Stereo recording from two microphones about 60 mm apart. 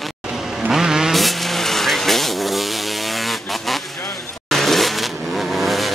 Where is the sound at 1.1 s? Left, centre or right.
Centre.